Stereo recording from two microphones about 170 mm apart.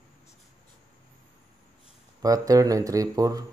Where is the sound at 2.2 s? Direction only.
20° right (ahead or behind).